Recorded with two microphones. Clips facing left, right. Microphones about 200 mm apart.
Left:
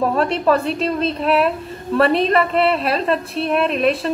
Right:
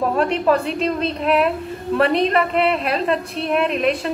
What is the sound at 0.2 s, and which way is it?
A woman's voice, 15° right (ahead or behind).